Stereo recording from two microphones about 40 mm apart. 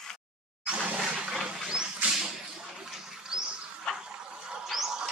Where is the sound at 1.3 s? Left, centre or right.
Centre.